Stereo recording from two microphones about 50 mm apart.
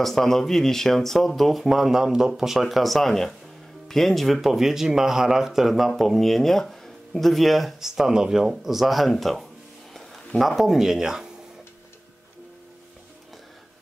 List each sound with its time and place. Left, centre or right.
0.0 s speech: centre
9.9 s a sound: centre
10.5 s speech: centre